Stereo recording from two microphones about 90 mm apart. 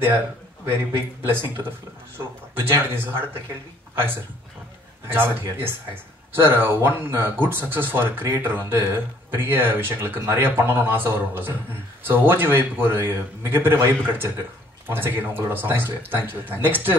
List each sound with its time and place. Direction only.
0.9 s speech: 25° right (ahead or behind)